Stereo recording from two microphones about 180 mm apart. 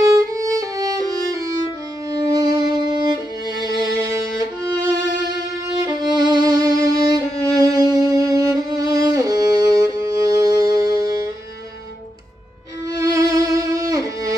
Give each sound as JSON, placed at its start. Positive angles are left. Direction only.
{"t": 0.0, "sound": "violin", "side_deg": -20}
{"t": 7.4, "sound": "music", "side_deg": -20}
{"t": 12.9, "sound": "violin", "side_deg": -20}